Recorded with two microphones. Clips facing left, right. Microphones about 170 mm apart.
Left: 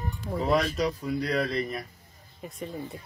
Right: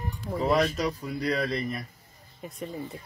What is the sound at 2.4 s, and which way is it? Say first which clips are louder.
Speech: even; centre (ahead or behind).